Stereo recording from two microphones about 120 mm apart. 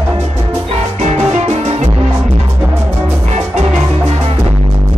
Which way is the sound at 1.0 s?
65° right (ahead or behind).